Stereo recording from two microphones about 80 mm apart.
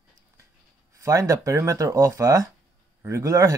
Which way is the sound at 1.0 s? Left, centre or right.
Right.